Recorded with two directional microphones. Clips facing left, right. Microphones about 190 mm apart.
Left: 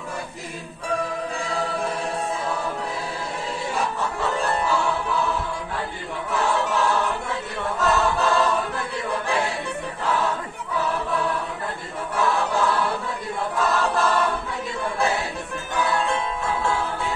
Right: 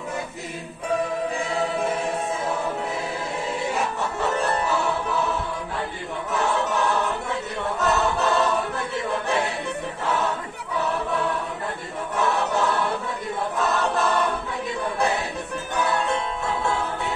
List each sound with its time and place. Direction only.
1.4 s choir: 20° right (ahead or behind)
6.3 s choir: 20° right (ahead or behind)
12.2 s choir: 20° right (ahead or behind)